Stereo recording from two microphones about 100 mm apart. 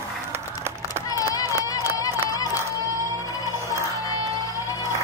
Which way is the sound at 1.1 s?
35° left (ahead or behind).